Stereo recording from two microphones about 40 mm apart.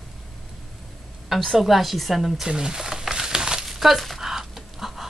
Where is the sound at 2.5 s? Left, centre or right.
Centre.